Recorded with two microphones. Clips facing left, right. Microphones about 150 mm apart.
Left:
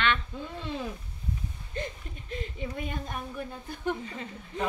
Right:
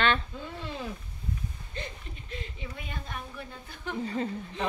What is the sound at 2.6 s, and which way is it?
Speech, 45° left (ahead or behind).